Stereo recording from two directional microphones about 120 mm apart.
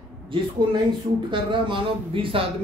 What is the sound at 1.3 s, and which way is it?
Speech, 45° right (ahead or behind).